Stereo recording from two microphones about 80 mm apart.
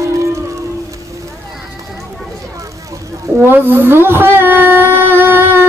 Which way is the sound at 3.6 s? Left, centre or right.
Right.